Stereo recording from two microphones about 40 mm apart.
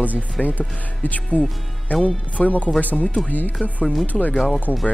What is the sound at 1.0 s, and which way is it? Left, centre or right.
Speech, left.